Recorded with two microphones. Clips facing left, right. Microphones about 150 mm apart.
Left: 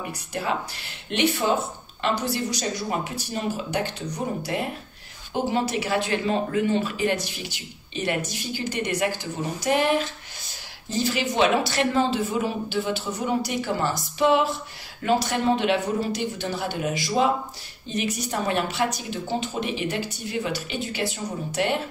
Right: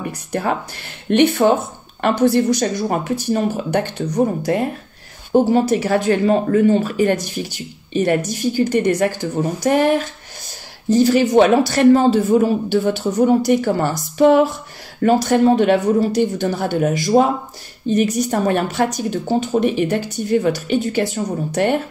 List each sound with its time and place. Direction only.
0.3 s speech: 50° right (ahead or behind)